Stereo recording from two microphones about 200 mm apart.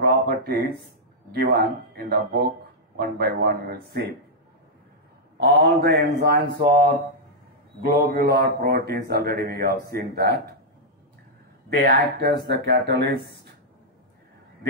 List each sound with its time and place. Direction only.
0.0 s a sound: 50° right (ahead or behind)
1.3 s speech: 50° right (ahead or behind)
5.4 s speech: 50° right (ahead or behind)
11.7 s speech: 50° right (ahead or behind)